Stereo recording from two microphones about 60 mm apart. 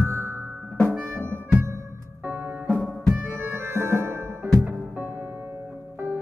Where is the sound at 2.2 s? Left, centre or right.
Right.